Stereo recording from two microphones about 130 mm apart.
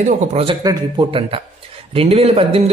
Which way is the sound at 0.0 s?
55° right (ahead or behind).